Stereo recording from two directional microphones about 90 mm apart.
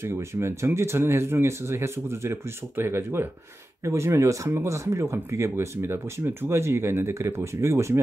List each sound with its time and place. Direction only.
0.0 s speech: 30° right (ahead or behind)